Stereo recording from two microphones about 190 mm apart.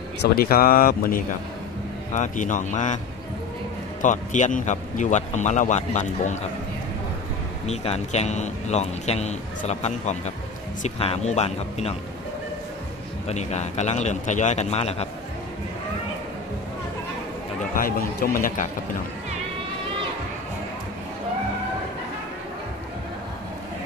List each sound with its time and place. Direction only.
0.2 s speech: 50° left (ahead or behind)
4.0 s speech: 40° left (ahead or behind)
7.6 s speech: 35° left (ahead or behind)
13.3 s speech: 35° left (ahead or behind)
17.7 s speech: 50° left (ahead or behind)